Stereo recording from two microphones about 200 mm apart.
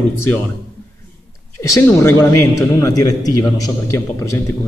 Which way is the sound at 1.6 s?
15° left (ahead or behind).